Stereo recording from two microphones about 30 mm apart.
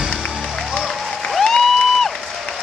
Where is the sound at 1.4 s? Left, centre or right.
Centre.